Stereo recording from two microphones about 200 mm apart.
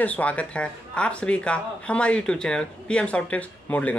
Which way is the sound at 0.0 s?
5° left (ahead or behind).